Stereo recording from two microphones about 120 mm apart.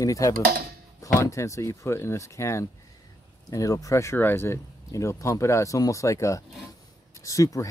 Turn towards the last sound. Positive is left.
turn(degrees=30)  # may be behind; listen again after turning